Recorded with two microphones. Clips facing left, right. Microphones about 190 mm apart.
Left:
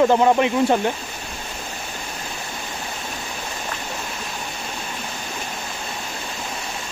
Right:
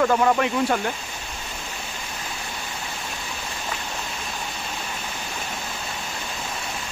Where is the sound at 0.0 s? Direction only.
20° left (ahead or behind).